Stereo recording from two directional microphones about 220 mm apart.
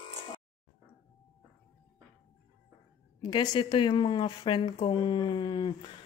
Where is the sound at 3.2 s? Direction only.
20° left (ahead or behind).